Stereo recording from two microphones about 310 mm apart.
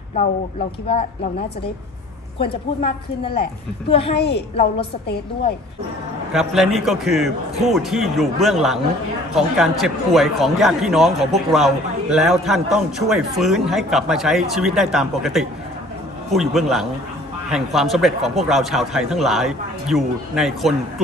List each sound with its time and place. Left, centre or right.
2.3 s a woman's voice: centre
4.1 s a woman's voice: left
6.3 s a man's voice: centre